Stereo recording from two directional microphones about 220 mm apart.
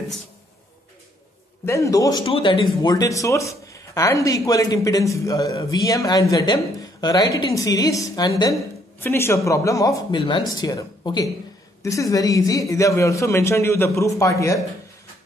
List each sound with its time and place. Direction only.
1.7 s a man's voice: 15° left (ahead or behind)